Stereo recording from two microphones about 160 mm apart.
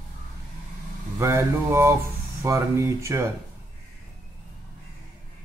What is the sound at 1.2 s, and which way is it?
Speech, 15° right (ahead or behind).